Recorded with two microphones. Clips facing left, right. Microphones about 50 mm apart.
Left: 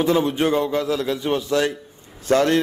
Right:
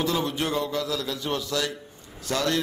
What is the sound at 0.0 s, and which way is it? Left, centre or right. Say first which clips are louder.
A man's voice: left 7 dB; left.